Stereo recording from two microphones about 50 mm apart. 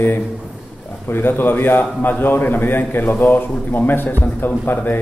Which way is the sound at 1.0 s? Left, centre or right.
Left.